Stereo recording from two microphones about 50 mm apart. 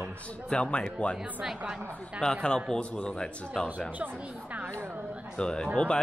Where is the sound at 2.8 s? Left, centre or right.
Left.